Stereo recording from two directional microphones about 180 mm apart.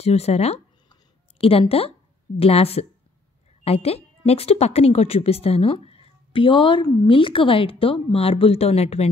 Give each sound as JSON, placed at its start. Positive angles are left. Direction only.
{"t": 0.0, "sound": "speech", "side_deg": 35}